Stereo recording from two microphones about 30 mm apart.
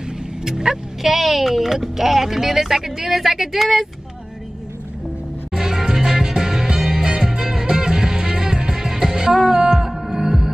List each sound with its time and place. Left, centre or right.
0.5 s speech: right
1.0 s speech: centre
5.5 s music: centre